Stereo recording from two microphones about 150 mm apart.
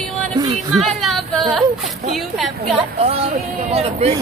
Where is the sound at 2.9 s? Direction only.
45° right (ahead or behind).